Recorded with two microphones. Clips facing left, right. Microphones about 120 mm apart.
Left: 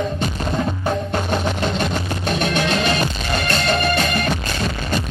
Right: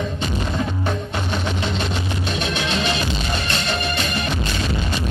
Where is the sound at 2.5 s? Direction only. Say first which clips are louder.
Left 3 dB; 45° left (ahead or behind).